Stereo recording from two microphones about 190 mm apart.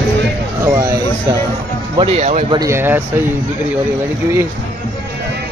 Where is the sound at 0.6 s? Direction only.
15° right (ahead or behind).